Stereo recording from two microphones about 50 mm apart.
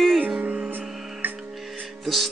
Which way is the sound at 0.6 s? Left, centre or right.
Right.